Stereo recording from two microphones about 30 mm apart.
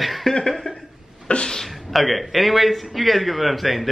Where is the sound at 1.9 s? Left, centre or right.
Centre.